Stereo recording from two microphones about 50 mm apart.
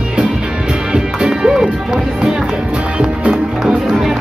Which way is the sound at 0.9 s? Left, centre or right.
Centre.